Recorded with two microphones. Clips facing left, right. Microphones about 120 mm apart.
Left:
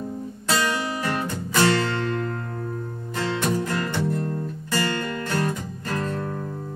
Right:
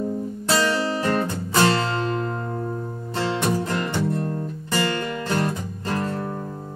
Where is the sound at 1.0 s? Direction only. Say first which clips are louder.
Right 4 dB; 25° right (ahead or behind).